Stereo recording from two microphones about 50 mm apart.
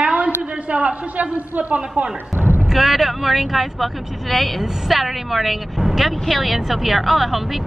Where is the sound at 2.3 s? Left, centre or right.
Right.